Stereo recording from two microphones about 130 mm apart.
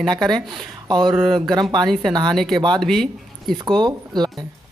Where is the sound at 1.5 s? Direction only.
35° right (ahead or behind).